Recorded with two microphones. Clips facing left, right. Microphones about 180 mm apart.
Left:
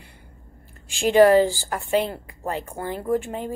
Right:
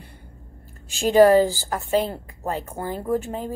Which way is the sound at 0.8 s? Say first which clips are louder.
Right 1 dB; 40° right (ahead or behind).